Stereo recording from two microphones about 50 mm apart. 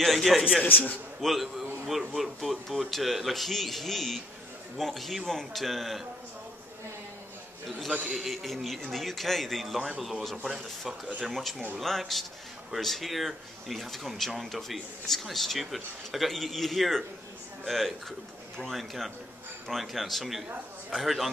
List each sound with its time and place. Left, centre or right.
0.0 s speech: centre
0.7 s a man's voice: left
1.2 s speech: centre
8.1 s speech: centre